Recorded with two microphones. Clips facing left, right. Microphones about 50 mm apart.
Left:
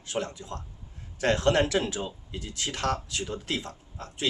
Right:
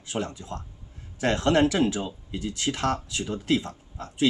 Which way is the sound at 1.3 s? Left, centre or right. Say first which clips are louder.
Right 5 dB; right.